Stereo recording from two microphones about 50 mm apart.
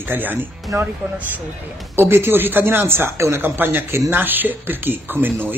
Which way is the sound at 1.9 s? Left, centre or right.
Right.